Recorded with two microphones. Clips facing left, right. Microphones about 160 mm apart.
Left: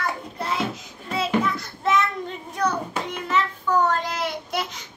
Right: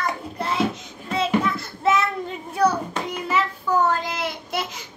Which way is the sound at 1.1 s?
Centre (ahead or behind).